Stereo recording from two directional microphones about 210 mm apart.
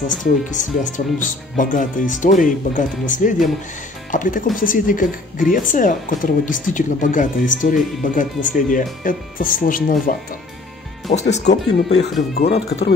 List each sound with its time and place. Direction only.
0.1 s speech: 40° left (ahead or behind)
11.1 s speech: 30° left (ahead or behind)
11.4 s speech: 55° left (ahead or behind)